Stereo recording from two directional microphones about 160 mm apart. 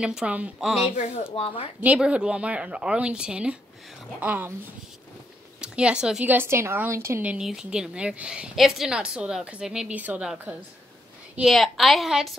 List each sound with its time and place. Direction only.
0.0 s a woman's voice: 5° right (ahead or behind)
1.3 s speech: 35° left (ahead or behind)
1.8 s a woman's voice: 10° right (ahead or behind)
5.6 s a woman's voice: 5° right (ahead or behind)